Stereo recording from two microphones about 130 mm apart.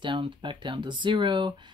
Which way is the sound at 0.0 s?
40° right (ahead or behind).